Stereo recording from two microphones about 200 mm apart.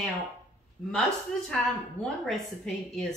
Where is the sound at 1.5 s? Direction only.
Centre (ahead or behind).